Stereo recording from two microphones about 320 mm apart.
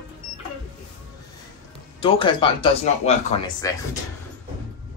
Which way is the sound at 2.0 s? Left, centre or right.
Centre.